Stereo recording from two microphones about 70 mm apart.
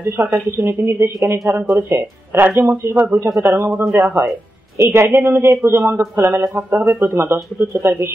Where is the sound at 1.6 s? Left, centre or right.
Right.